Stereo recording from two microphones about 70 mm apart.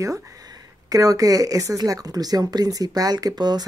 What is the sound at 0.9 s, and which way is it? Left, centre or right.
Speech, right.